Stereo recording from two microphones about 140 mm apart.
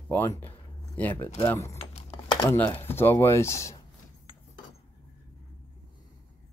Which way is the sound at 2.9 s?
15° left (ahead or behind).